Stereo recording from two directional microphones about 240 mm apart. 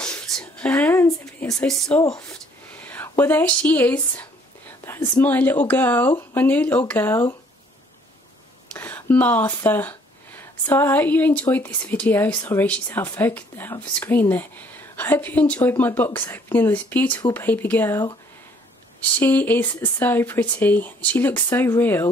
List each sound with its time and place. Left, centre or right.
0.0 s speech: centre
8.7 s speech: centre